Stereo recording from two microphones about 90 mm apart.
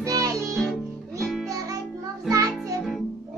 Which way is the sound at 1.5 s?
35° right (ahead or behind).